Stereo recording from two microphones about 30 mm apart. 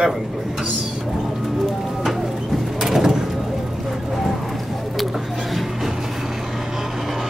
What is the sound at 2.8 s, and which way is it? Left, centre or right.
Vehicle, centre.